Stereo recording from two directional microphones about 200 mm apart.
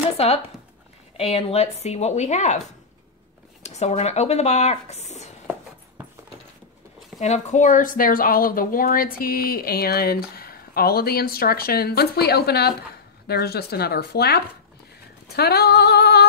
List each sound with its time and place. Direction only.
0.2 s speech: 30° left (ahead or behind)
3.6 s speech: 35° left (ahead or behind)
7.2 s a woman's voice: 35° left (ahead or behind); by 14.4 s 50° left (ahead or behind)
15.2 s female singing: 55° left (ahead or behind)